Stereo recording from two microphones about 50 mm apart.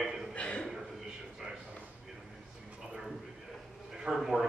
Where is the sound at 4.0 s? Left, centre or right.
Centre.